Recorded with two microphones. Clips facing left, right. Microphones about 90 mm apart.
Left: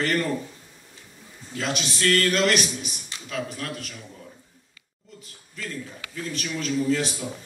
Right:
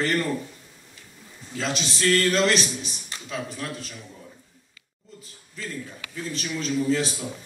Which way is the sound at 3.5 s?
30° right (ahead or behind).